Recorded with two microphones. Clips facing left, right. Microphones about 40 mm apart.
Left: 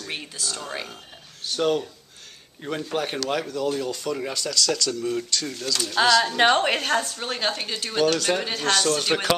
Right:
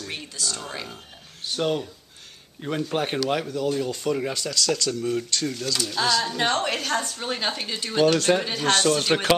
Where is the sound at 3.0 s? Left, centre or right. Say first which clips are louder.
Right 1 dB; centre.